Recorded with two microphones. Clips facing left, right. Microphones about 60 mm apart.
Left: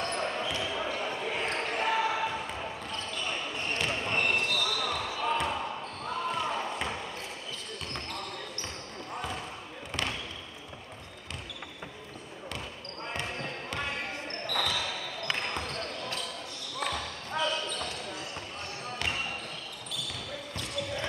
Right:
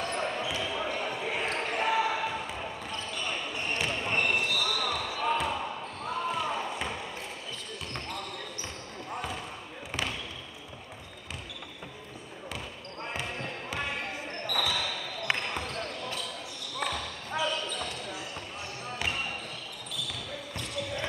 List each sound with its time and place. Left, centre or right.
0.0 s basketball bounce: centre
13.0 s basketball bounce: centre
20.5 s basketball bounce: centre